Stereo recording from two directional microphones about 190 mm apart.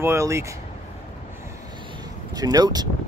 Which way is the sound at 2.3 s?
20° right (ahead or behind).